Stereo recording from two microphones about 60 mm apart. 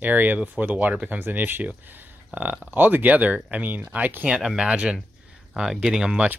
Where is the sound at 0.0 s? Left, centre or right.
Right.